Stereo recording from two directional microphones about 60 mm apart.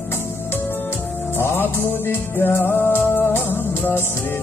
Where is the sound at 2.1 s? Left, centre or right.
Left.